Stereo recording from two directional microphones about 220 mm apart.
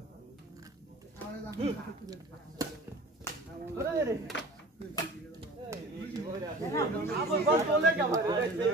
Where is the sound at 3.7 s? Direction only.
15° right (ahead or behind).